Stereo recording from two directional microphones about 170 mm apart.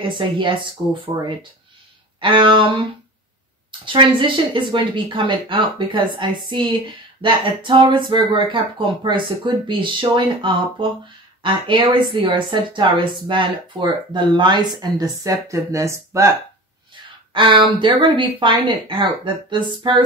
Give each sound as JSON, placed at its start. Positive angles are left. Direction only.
{"t": 0.1, "sound": "speech", "side_deg": -30}
{"t": 2.1, "sound": "a sound", "side_deg": -30}
{"t": 3.8, "sound": "speech", "side_deg": -30}
{"t": 17.3, "sound": "speech", "side_deg": -30}